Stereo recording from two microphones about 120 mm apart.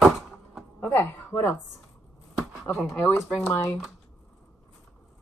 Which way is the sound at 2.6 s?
5° left (ahead or behind).